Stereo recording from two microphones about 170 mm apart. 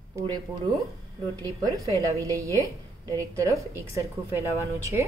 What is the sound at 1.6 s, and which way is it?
A woman's voice, 20° right (ahead or behind).